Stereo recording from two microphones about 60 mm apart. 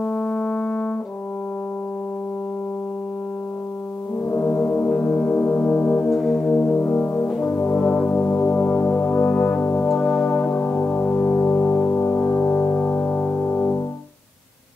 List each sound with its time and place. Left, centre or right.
0.0 s brass instrument: left
4.3 s music: left
6.0 s brass instrument: centre
6.5 s music: left
7.5 s brass instrument: left
9.9 s music: centre